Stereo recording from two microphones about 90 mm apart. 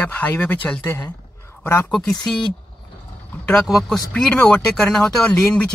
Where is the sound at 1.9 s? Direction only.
5° left (ahead or behind).